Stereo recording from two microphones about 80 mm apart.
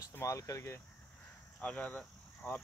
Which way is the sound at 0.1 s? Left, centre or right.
Left.